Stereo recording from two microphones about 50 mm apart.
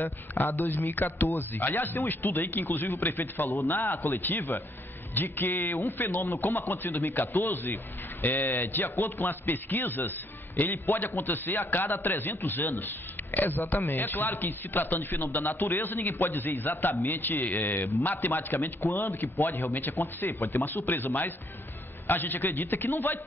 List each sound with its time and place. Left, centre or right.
0.0 s a man's voice: left